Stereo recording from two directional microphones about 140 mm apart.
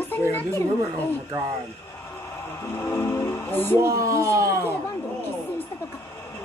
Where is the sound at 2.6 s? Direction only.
20° left (ahead or behind).